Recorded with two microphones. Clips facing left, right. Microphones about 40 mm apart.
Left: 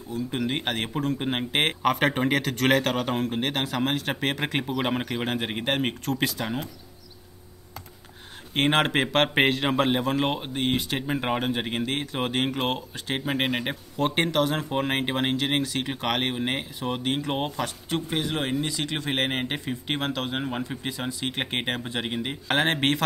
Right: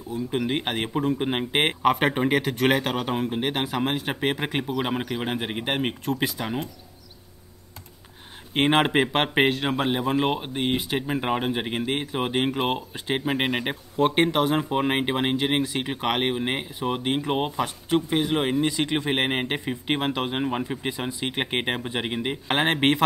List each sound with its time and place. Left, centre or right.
0.3 s a man's voice: centre
8.5 s speech: centre
9.3 s a man's voice: centre